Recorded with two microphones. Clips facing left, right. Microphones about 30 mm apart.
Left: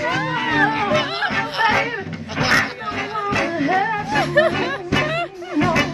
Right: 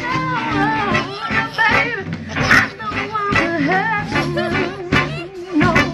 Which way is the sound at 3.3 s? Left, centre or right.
Right.